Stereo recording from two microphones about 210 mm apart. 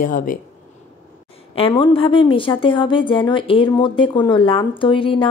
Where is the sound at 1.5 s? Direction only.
25° left (ahead or behind).